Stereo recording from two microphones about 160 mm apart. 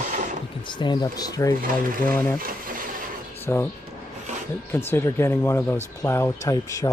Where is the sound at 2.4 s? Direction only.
60° right (ahead or behind).